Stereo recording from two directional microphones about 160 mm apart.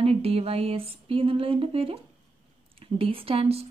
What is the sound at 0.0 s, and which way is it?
Speech, 40° right (ahead or behind).